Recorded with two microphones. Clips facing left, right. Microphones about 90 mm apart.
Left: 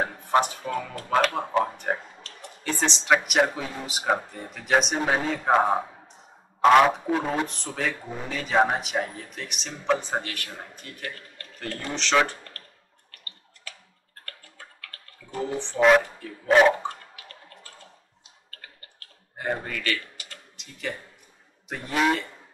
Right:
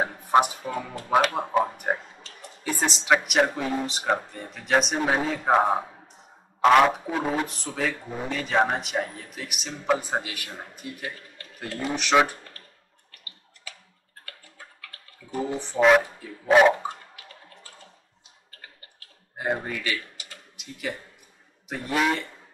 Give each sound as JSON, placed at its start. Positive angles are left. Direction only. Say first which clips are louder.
{"t": 0.2, "sound": "music", "louder": "right 3 dB", "side_deg": -15}
{"t": 0.7, "sound": "speech", "louder": "even", "side_deg": -15}
{"t": 14.2, "sound": "clicking", "louder": "left 1 dB", "side_deg": -10}
{"t": 15.8, "sound": "speech", "louder": "even", "side_deg": -5}
{"t": 16.6, "sound": "a sound", "louder": "right 1 dB", "side_deg": -10}
{"t": 19.3, "sound": "a sound", "louder": "right 2 dB", "side_deg": -15}
{"t": 21.6, "sound": "speech", "louder": "left 1 dB", "side_deg": 0}